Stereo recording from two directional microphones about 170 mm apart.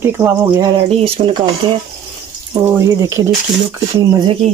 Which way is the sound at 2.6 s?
15° right (ahead or behind).